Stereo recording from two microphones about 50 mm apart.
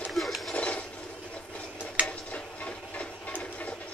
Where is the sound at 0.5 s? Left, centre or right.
Left.